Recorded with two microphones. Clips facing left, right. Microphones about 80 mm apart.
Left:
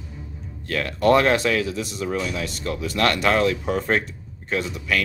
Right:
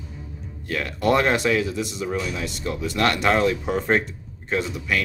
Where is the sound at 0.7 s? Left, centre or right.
Centre.